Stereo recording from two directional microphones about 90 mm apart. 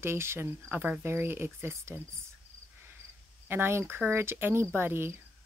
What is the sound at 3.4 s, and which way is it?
Speech, 25° right (ahead or behind).